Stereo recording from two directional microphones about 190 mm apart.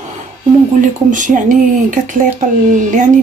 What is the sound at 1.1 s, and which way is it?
Speech, 40° right (ahead or behind).